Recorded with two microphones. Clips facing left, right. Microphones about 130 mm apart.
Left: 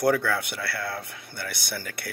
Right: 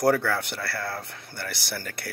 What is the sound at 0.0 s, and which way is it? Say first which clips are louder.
Speech: right 1 dB; 35° right (ahead or behind).